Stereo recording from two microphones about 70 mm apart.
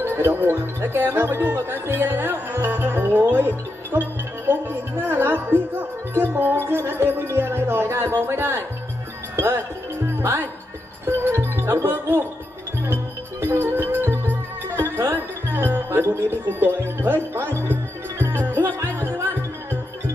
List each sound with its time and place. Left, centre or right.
0.0 s speech: right
11.1 s music: right
11.8 s speech: right
12.8 s music: right